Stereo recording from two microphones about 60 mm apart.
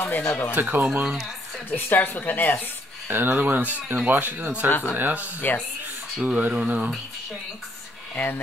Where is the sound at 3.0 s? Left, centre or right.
Right.